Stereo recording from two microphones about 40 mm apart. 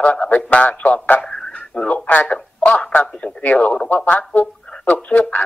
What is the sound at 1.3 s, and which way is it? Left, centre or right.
Radio, centre.